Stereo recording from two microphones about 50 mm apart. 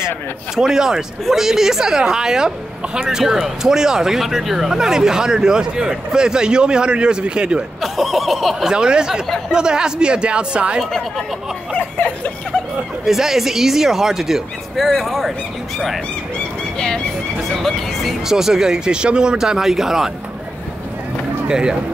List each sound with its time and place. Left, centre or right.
0.6 s a woman's voice: centre
7.8 s a sound: centre
8.6 s a woman's voice: centre
10.8 s a sound: centre
11.7 s a sound: left
13.0 s a woman's voice: centre
16.7 s speech: centre
17.5 s speech: centre
18.2 s a woman's voice: centre
21.5 s speech: centre